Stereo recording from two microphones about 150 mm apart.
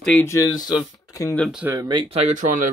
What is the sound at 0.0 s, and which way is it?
Speech, 10° left (ahead or behind).